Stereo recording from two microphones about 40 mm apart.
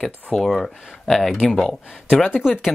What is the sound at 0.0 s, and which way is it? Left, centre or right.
Speech, centre.